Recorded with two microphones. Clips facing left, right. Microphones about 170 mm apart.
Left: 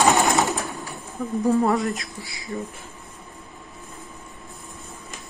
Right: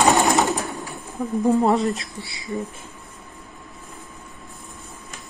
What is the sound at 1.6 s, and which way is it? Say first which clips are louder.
Speech: right 2 dB; 20° right (ahead or behind).